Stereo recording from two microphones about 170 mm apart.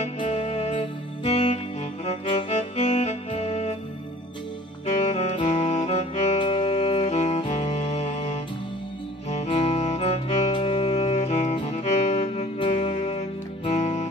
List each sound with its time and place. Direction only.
0.0 s music: 40° left (ahead or behind)
4.8 s music: 40° left (ahead or behind)
6.4 s music: 30° left (ahead or behind)